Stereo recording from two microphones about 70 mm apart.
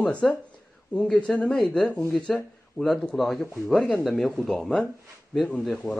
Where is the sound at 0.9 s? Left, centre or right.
Centre.